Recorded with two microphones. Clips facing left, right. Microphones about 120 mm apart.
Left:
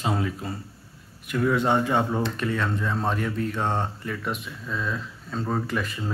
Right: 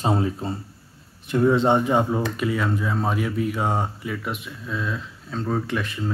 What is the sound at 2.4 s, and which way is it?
Speech, 5° right (ahead or behind).